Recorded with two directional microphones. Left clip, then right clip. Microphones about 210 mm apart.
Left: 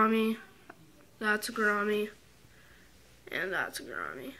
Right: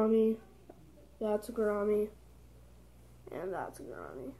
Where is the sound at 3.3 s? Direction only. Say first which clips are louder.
Left 6 dB; 20° left (ahead or behind).